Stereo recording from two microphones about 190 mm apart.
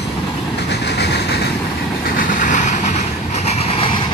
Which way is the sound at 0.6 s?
65° left (ahead or behind).